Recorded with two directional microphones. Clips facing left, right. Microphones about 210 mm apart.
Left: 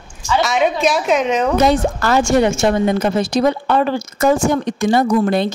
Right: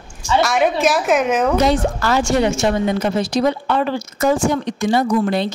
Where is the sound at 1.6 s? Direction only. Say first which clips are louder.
Left 2 dB; 50° left (ahead or behind).